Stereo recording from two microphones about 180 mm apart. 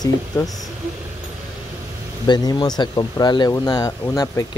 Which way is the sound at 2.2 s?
25° left (ahead or behind).